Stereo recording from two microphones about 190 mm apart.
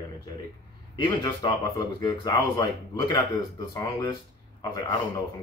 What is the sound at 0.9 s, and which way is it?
Speech, 25° left (ahead or behind).